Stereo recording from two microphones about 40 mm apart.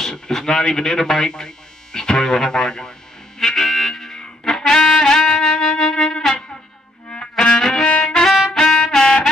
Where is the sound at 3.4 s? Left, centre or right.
Centre.